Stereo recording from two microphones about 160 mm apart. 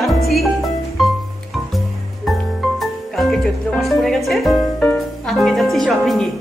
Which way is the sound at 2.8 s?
Centre (ahead or behind).